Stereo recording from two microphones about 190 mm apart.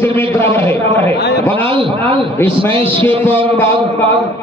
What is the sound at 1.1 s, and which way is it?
Speech, 60° left (ahead or behind).